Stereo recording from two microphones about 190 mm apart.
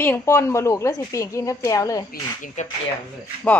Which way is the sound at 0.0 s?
10° left (ahead or behind).